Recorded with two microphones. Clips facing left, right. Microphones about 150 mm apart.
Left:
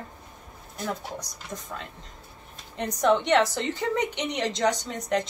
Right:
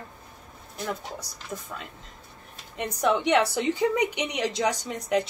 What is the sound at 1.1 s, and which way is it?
A woman's voice, 5° right (ahead or behind).